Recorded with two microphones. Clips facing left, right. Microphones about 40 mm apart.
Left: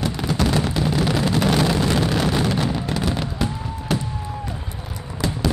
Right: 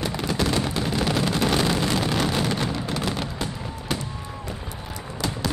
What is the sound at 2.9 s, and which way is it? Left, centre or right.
Fireworks, centre.